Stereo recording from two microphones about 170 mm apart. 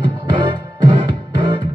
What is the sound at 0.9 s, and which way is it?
Music, 25° right (ahead or behind).